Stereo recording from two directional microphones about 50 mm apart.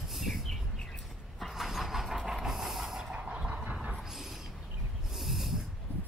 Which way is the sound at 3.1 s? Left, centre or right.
Right.